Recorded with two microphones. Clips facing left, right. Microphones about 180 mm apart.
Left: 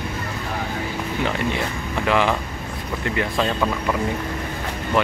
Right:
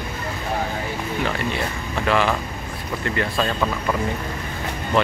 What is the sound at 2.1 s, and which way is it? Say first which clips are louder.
Speech: even; 15° left (ahead or behind).